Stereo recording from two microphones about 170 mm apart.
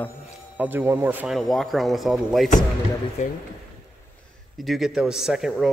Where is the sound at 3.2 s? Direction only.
45° left (ahead or behind).